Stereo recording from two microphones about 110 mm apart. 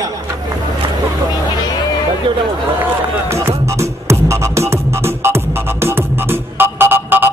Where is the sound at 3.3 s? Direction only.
25° right (ahead or behind).